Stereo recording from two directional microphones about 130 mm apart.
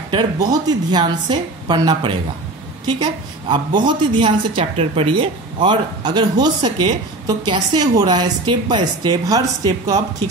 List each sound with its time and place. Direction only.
0.1 s a woman's voice: 35° right (ahead or behind)